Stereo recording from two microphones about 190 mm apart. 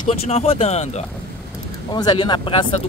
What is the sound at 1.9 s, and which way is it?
Speech, 25° left (ahead or behind).